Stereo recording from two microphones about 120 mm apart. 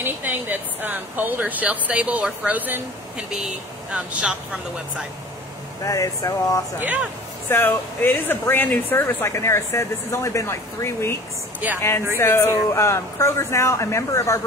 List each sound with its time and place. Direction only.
0.0 s speech: 15° right (ahead or behind)
5.9 s speech: 30° left (ahead or behind)
6.8 s speech: 15° right (ahead or behind)
7.4 s speech: 15° left (ahead or behind)
11.6 s speech: 10° right (ahead or behind)
12.2 s speech: 20° left (ahead or behind)